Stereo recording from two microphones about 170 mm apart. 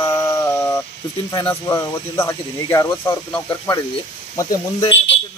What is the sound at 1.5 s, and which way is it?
Speech, 15° left (ahead or behind).